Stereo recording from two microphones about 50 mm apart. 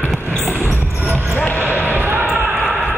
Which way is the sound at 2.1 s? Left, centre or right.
Right.